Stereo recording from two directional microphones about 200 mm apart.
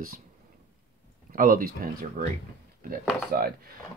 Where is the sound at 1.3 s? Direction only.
45° right (ahead or behind).